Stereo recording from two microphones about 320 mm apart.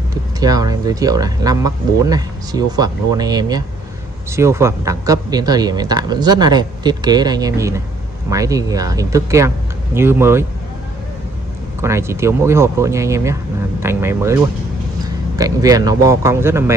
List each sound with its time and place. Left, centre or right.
0.4 s speech: centre
11.8 s speech: centre